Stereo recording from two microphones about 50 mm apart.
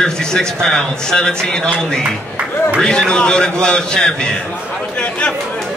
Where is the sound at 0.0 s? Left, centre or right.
Centre.